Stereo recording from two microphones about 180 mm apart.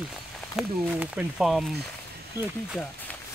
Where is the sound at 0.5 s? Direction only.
5° right (ahead or behind).